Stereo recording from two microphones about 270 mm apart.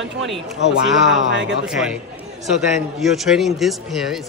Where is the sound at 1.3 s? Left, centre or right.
Right.